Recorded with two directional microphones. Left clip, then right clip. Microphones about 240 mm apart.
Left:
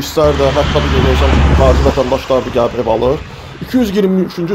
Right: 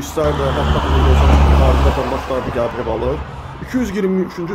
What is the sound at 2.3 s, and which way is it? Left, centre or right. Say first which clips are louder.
Speech: left 9 dB; centre.